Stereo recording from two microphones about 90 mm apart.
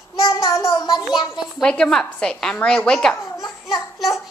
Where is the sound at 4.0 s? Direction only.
Centre (ahead or behind).